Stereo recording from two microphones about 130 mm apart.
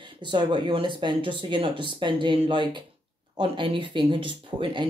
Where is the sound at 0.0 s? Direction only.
35° right (ahead or behind).